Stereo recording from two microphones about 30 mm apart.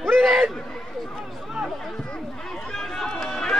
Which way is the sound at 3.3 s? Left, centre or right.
Centre.